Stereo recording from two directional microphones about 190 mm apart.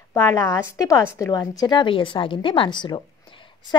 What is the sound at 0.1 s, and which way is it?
A woman's voice, 15° left (ahead or behind).